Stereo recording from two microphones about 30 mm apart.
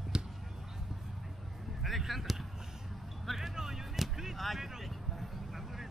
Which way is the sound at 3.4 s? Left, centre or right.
Centre.